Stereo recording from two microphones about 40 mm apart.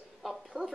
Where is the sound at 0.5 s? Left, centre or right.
Left.